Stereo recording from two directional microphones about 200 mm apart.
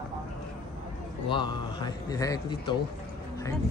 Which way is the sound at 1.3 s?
20° left (ahead or behind).